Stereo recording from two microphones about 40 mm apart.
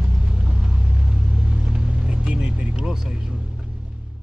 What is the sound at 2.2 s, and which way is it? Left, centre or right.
Vehicle, right.